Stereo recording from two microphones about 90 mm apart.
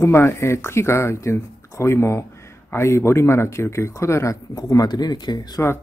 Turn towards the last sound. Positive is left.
turn(degrees=50)  # may be behind; listen again after turning